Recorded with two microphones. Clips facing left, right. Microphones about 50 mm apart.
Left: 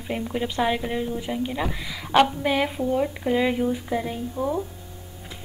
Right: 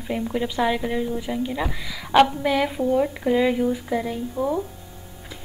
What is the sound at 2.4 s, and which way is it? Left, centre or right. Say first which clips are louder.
A woman's voice: right 2 dB; centre.